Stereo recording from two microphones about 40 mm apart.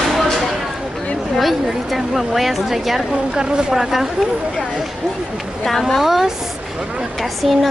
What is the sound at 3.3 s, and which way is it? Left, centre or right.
Speech, centre.